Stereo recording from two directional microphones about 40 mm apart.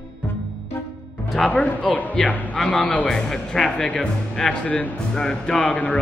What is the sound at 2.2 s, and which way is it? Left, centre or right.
Speech, centre.